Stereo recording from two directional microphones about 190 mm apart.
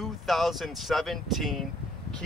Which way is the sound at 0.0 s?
Centre (ahead or behind).